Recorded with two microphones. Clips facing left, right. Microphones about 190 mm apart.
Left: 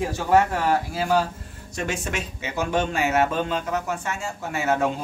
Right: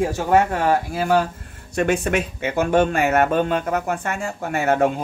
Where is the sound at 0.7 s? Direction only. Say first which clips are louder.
Right 3 dB; 55° right (ahead or behind).